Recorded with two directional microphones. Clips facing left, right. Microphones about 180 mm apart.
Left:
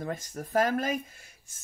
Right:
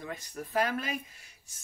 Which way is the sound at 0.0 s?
45° left (ahead or behind).